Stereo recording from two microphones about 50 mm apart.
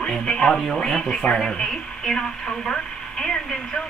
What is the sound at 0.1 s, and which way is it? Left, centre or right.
A woman's voice, centre.